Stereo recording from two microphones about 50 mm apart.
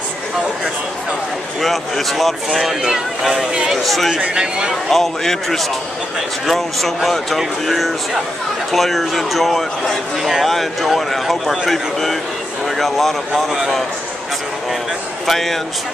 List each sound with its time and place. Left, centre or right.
1.6 s speech: centre
3.7 s speech: centre
4.2 s speech: centre
4.8 s speech: centre
13.3 s speech: centre
15.2 s speech: centre